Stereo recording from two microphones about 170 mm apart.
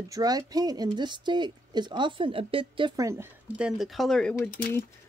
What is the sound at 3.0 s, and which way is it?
Speech, 15° right (ahead or behind).